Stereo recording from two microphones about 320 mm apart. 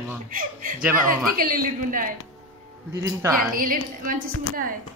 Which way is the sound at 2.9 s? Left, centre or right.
Centre.